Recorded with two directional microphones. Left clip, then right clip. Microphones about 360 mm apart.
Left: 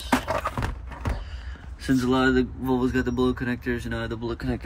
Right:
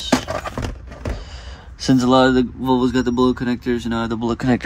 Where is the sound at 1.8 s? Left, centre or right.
Right.